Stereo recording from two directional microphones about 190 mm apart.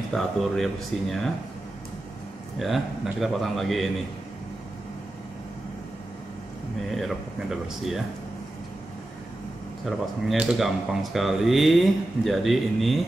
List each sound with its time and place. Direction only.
0.1 s speech: centre (ahead or behind)
2.6 s speech: centre (ahead or behind)
6.9 s speech: centre (ahead or behind)
9.8 s speech: 5° right (ahead or behind)